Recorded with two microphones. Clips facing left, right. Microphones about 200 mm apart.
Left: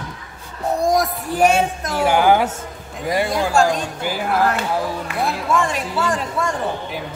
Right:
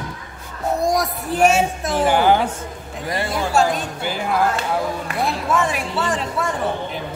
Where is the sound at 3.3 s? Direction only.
5° right (ahead or behind).